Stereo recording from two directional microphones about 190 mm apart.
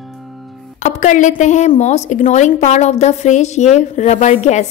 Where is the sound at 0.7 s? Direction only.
40° left (ahead or behind).